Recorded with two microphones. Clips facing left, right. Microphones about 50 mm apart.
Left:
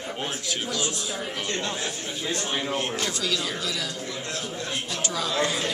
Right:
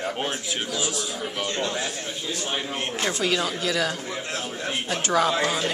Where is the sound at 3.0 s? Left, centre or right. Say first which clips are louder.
Right 4 dB; right.